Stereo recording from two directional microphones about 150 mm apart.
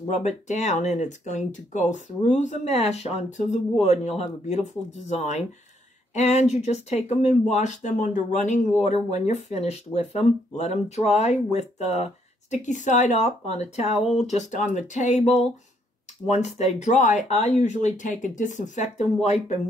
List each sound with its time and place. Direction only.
0.2 s speech: 50° left (ahead or behind)